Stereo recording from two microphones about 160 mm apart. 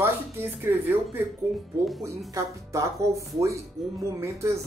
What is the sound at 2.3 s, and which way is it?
Speech, 20° right (ahead or behind).